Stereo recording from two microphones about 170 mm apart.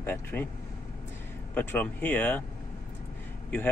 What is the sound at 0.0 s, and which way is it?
Speech, 10° left (ahead or behind).